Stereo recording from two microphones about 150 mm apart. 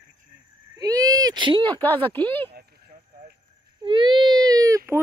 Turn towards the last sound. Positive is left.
turn(degrees=-20)  # may be behind; listen again after turning